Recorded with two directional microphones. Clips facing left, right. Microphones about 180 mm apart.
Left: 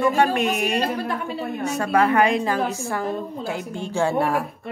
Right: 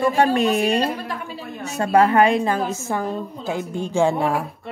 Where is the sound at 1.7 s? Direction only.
30° right (ahead or behind).